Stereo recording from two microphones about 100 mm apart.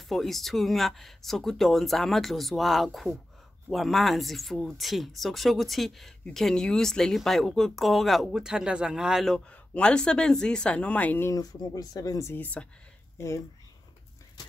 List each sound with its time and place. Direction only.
0.1 s speech: centre (ahead or behind)
9.5 s speech: 10° left (ahead or behind)
11.2 s speech: 35° left (ahead or behind)
12.4 s speech: 15° left (ahead or behind)
13.2 s speech: 30° left (ahead or behind)